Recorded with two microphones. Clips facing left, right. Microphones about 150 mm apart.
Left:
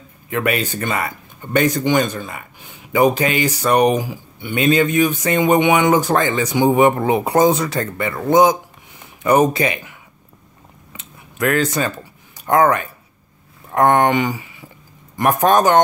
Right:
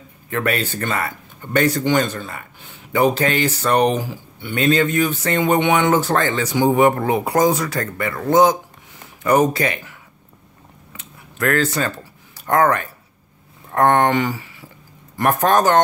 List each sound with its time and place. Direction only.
0.3 s speech: 15° left (ahead or behind)
10.9 s a sound: 15° left (ahead or behind)
12.4 s speech: 15° left (ahead or behind)